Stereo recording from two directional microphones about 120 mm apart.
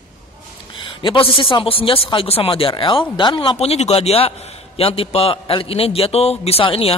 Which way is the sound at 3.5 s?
60° left (ahead or behind).